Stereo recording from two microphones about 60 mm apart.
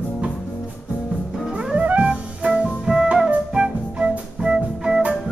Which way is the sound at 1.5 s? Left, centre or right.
Right.